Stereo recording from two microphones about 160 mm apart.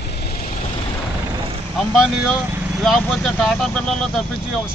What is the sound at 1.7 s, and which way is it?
Speech, centre (ahead or behind).